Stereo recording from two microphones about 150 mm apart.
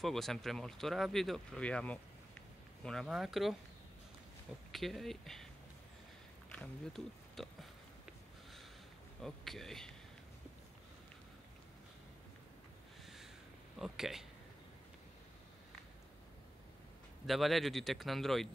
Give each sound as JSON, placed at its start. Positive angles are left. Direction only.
{"t": 0.0, "sound": "speech", "side_deg": 0}
{"t": 4.7, "sound": "speech", "side_deg": 0}
{"t": 6.5, "sound": "speech", "side_deg": 5}
{"t": 9.2, "sound": "speech", "side_deg": 0}
{"t": 13.7, "sound": "speech", "side_deg": -5}
{"t": 17.3, "sound": "speech", "side_deg": 0}